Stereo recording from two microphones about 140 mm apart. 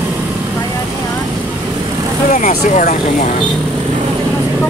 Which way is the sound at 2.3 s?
65° left (ahead or behind).